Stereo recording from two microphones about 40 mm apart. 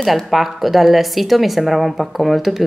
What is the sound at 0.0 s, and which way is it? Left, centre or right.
Speech, centre.